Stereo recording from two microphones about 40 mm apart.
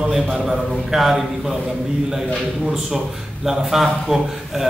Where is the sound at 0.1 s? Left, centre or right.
Centre.